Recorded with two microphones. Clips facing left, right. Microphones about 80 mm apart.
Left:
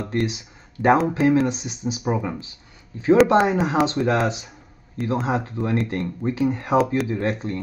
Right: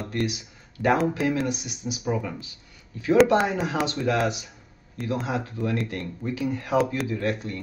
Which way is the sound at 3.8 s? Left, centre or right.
Left.